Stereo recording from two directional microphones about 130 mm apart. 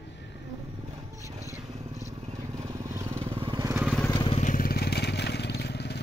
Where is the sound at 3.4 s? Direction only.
35° right (ahead or behind).